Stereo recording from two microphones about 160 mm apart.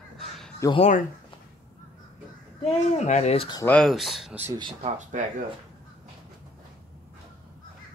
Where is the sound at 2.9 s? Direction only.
45° left (ahead or behind).